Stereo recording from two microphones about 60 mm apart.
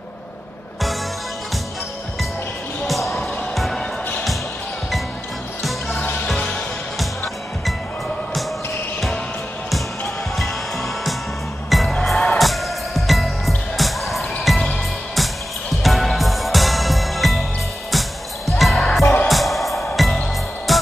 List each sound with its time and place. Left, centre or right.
2.9 s music: centre
5.6 s music: centre
6.3 s music: centre
9.7 s music: centre
15.8 s music: centre